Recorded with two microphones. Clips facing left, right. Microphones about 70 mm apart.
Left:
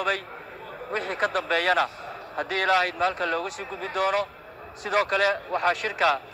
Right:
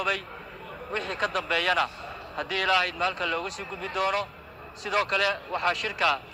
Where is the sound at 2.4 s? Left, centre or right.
Left.